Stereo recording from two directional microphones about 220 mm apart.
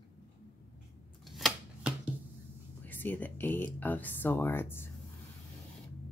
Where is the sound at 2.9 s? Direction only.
10° left (ahead or behind).